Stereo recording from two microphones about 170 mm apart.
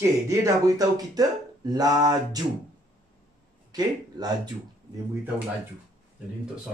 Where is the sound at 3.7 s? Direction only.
25° right (ahead or behind).